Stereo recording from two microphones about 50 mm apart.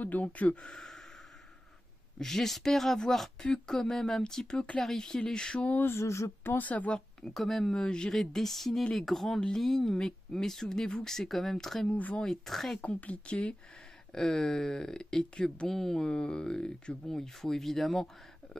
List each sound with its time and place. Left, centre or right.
0.0 s speech: left
0.6 s speech: centre
2.1 s speech: centre
5.9 s speech: left
6.6 s speech: left
7.3 s a sound: centre
7.7 s speech: centre
8.1 s a sound: centre
9.6 s speech: centre
12.2 s a sound: centre
12.8 s speech: left
14.1 s speech: centre